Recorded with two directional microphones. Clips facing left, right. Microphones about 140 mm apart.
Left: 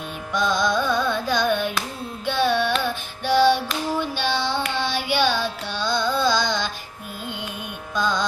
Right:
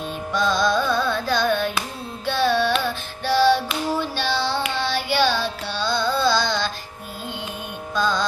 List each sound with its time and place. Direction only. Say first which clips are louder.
0.3 s carnatic music: right 1 dB; 15° left (ahead or behind)
3.3 s female singing: even; 15° left (ahead or behind)
4.2 s child singing: even; 15° left (ahead or behind)
4.8 s carnatic music: right 2 dB; 15° left (ahead or behind)
7.9 s music: right 1 dB; 15° left (ahead or behind)